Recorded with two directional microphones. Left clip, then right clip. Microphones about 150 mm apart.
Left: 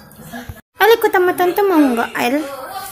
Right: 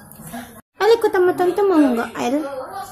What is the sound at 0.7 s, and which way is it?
A woman's voice, 5° right (ahead or behind).